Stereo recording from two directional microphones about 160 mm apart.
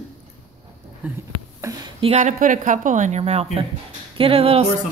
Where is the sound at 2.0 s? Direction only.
45° right (ahead or behind).